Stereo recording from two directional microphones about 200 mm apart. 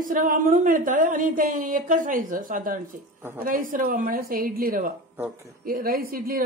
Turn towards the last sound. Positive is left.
turn(degrees=-45)  # may be behind; listen again after turning